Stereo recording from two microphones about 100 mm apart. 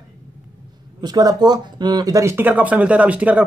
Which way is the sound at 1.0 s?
45° right (ahead or behind).